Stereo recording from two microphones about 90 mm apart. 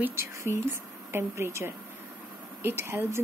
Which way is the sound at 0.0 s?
30° right (ahead or behind).